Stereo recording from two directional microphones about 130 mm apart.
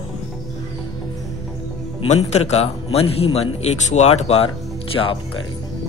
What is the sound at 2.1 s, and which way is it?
A man's voice, 55° left (ahead or behind).